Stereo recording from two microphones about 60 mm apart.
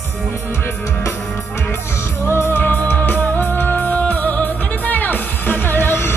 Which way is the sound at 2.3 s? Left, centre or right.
Left.